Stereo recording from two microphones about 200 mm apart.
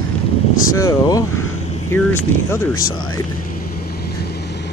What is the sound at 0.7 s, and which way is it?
Speech, 15° left (ahead or behind).